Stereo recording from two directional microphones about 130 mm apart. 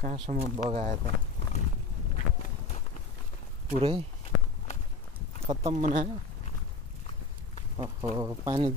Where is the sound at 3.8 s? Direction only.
45° right (ahead or behind).